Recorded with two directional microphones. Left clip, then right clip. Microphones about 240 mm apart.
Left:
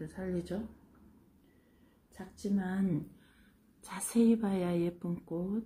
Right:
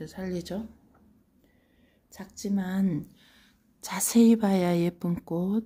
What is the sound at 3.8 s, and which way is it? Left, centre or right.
Speech, right.